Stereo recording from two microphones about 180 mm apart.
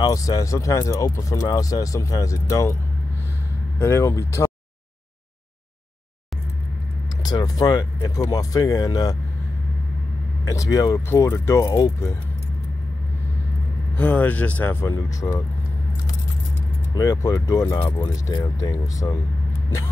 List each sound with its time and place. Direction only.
0.0 s speech: 20° left (ahead or behind)
3.8 s speech: 15° left (ahead or behind)
7.2 s speech: 20° left (ahead or behind)
10.4 s speech: 20° left (ahead or behind)
13.9 s speech: 10° left (ahead or behind)
16.9 s speech: 20° left (ahead or behind)